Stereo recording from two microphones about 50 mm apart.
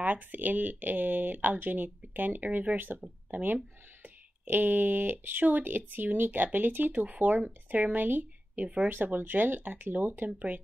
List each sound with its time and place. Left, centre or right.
0.0 s speech: right
8.6 s speech: right
8.9 s speech: right